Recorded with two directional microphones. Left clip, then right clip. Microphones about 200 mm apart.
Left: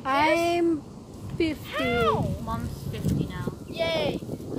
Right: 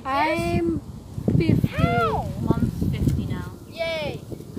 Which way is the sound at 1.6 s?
15° right (ahead or behind).